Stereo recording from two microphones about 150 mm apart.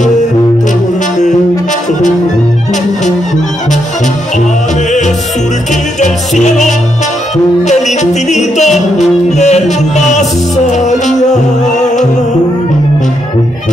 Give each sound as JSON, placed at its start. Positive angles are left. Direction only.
{"t": 5.9, "sound": "music", "side_deg": 55}